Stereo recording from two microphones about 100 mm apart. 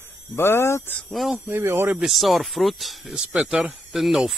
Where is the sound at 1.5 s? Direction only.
25° right (ahead or behind).